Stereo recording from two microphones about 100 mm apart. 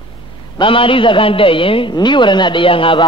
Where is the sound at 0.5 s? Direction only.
60° left (ahead or behind).